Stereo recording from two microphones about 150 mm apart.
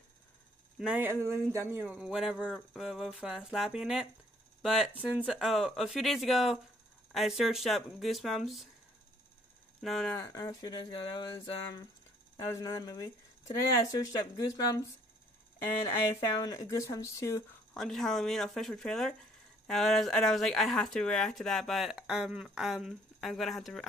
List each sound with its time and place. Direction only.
0.7 s speech: 10° right (ahead or behind)
9.8 s speech: centre (ahead or behind)
10.1 s speech: 20° left (ahead or behind)
12.4 s speech: 25° left (ahead or behind)
16.1 s speech: 20° left (ahead or behind)
17.7 s speech: centre (ahead or behind)